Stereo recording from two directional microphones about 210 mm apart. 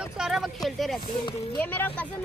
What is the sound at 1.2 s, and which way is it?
Speech, 20° left (ahead or behind).